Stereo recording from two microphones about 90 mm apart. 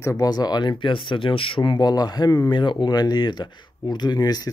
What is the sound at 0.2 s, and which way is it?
Speech, 45° left (ahead or behind).